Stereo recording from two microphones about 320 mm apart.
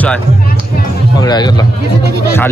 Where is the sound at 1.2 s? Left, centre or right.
Centre.